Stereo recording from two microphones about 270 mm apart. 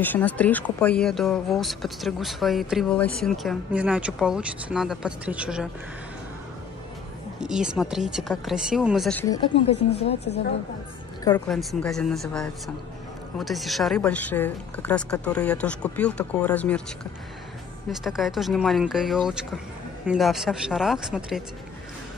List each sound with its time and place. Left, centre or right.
0.0 s a woman's voice: centre
7.3 s a woman's voice: centre
9.7 s speech: left
11.4 s a woman's voice: centre
17.8 s a woman's voice: centre